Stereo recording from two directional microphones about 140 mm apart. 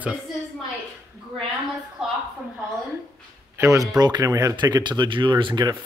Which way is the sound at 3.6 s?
25° right (ahead or behind).